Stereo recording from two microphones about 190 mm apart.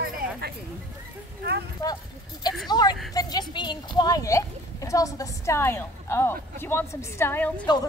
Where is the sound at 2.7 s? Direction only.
20° left (ahead or behind).